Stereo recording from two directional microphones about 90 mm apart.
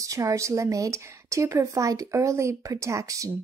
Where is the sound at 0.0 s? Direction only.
35° right (ahead or behind).